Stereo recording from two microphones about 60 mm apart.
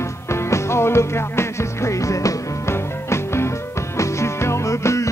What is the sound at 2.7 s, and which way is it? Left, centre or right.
Music, left.